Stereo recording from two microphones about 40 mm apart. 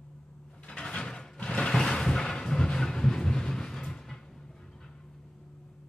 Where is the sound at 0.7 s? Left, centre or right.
Left.